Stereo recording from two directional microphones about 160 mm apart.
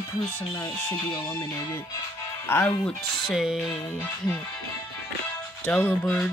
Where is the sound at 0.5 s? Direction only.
20° left (ahead or behind); by 3.8 s centre (ahead or behind).